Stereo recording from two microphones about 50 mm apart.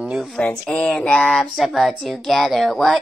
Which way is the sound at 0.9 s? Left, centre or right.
Centre.